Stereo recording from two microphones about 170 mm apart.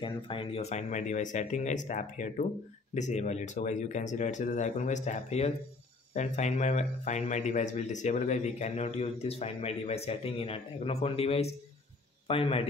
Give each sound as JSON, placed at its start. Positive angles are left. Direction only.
{"t": 0.0, "sound": "speech", "side_deg": 30}